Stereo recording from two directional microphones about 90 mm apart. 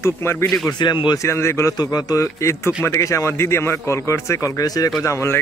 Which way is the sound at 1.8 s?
45° left (ahead or behind).